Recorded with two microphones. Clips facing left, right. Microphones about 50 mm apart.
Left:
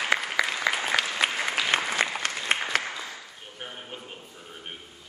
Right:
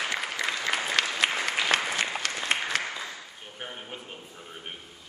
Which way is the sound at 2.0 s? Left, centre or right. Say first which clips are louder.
Left 2 dB; left.